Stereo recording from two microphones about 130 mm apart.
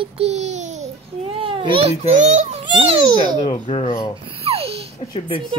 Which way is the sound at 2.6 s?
40° right (ahead or behind).